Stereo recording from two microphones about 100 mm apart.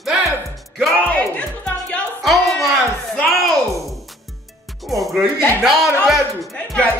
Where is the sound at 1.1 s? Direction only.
10° left (ahead or behind).